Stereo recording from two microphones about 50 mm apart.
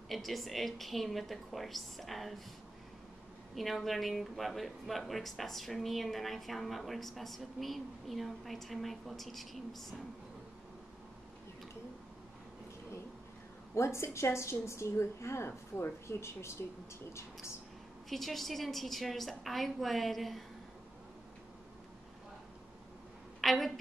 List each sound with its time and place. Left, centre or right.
0.1 s speech: centre
3.5 s speech: centre
13.7 s a woman's voice: left
18.1 s speech: centre
23.4 s a woman's voice: centre